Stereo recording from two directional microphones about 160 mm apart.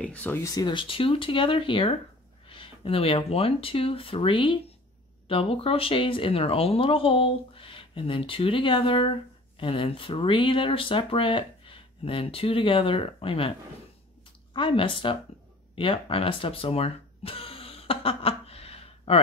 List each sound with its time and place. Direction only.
0.0 s speech: 10° left (ahead or behind)
0.6 s speech: 30° left (ahead or behind)